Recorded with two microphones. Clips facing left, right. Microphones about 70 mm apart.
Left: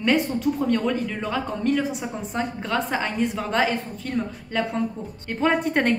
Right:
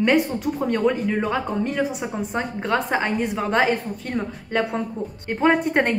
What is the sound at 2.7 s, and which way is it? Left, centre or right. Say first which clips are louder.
A woman's voice: right 5 dB; right.